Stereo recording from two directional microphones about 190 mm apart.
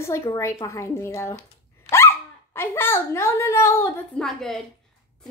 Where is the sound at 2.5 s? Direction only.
10° left (ahead or behind).